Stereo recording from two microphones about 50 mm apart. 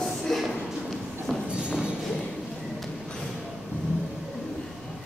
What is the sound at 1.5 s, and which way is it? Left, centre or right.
Music, centre.